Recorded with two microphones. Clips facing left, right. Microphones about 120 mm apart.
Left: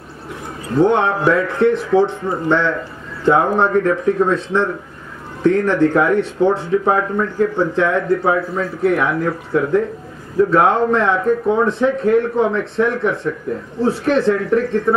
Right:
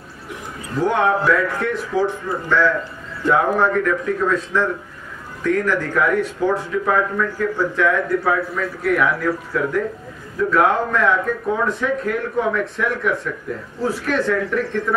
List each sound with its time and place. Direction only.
0.7 s speech: 30° left (ahead or behind)